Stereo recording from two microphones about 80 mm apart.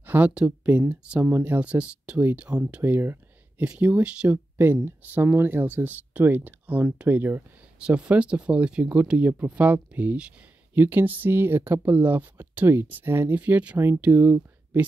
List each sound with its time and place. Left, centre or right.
0.0 s a sound: right
0.3 s speech: centre
2.8 s a sound: right
3.6 s speech: centre
7.8 s speech: centre; by 13.4 s right
13.4 s speech: centre